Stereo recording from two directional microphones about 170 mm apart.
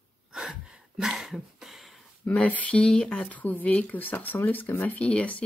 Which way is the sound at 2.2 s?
10° left (ahead or behind).